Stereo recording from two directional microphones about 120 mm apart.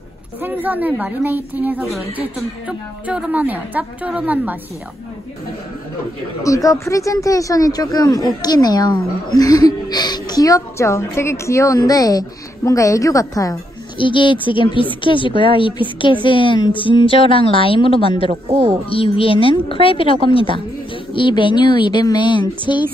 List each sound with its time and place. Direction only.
0.4 s a woman's voice: 15° right (ahead or behind)
6.4 s speech: 30° left (ahead or behind)
13.9 s a woman's voice: 45° left (ahead or behind)
18.3 s speech: 60° right (ahead or behind)
18.9 s a woman's voice: 50° left (ahead or behind)